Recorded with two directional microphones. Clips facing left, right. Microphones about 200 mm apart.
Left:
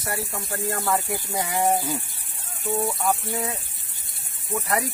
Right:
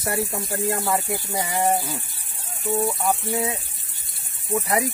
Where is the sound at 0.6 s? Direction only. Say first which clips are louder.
Right 1 dB; 20° right (ahead or behind).